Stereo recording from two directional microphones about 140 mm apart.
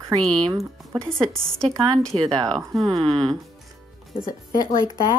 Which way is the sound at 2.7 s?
Centre (ahead or behind).